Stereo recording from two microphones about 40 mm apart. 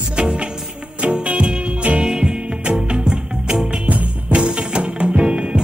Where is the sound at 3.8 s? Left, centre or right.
Right.